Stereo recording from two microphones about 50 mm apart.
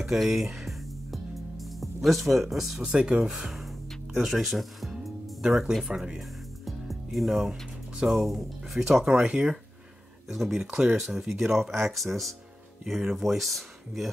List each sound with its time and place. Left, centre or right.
0.0 s music: centre
2.0 s speech: centre
2.8 s speech: right
3.3 s speech: centre
6.1 s music: centre
9.2 s speech: right
10.2 s speech: centre
10.6 s speech: right
11.0 s speech: centre